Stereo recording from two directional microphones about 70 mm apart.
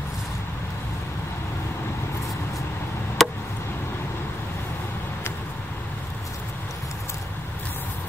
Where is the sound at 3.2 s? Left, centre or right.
Centre.